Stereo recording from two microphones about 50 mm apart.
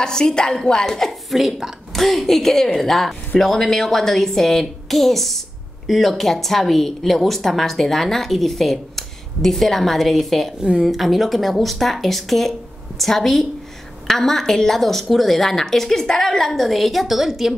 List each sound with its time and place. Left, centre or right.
0.0 s a woman's voice: centre
1.3 s a woman's voice: centre
10.6 s a woman's voice: centre